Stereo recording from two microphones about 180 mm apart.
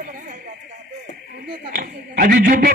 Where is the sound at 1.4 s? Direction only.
55° right (ahead or behind).